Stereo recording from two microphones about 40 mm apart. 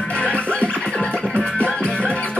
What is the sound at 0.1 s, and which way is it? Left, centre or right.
Music, left.